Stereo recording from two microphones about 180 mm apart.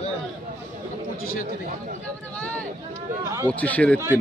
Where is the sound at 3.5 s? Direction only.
10° left (ahead or behind).